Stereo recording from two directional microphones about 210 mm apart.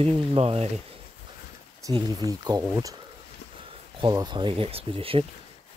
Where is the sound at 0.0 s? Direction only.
25° right (ahead or behind).